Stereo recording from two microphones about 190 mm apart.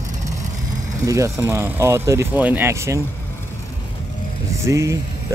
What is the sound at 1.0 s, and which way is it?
Speech, 15° right (ahead or behind).